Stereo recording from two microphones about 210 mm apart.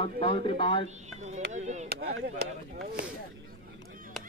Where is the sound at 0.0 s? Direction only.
25° left (ahead or behind).